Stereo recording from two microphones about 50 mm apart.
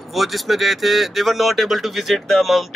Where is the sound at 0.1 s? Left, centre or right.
Centre.